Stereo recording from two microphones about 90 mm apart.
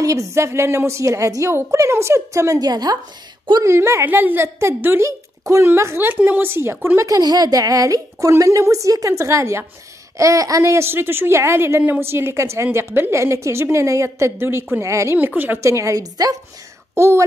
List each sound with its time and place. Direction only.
0.0 s a woman's voice: 35° right (ahead or behind)
3.6 s speech: 30° right (ahead or behind)
7.1 s a woman's voice: 45° right (ahead or behind)
15.1 s a woman's voice: 20° right (ahead or behind); by 16.3 s 45° right (ahead or behind)
16.9 s speech: 30° right (ahead or behind)